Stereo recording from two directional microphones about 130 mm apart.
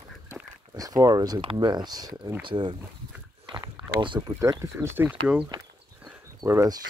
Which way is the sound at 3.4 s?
40° right (ahead or behind).